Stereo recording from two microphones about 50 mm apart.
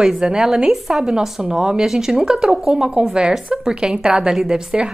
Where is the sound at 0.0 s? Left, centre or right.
Centre.